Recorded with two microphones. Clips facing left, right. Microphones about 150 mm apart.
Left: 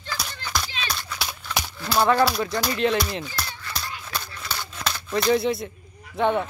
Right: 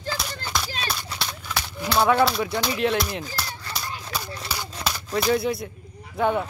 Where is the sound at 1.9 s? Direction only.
Centre (ahead or behind).